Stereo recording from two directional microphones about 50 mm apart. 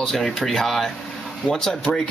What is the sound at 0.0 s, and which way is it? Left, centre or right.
Speech, centre.